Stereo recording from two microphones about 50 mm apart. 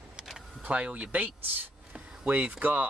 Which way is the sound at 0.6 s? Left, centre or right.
Right.